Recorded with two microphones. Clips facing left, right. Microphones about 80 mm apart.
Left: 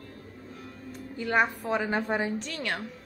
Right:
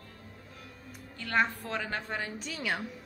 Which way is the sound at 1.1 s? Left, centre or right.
Centre.